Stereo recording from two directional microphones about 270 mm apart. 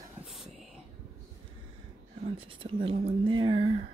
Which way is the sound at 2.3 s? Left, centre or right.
Centre.